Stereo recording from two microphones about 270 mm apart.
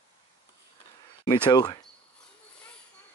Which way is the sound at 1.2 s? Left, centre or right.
Centre.